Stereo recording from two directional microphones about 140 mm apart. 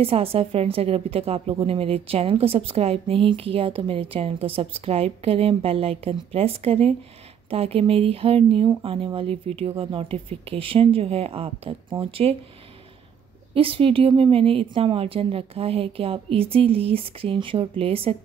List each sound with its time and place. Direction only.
0.0 s a woman's voice: 45° right (ahead or behind)
13.6 s a woman's voice: 40° right (ahead or behind)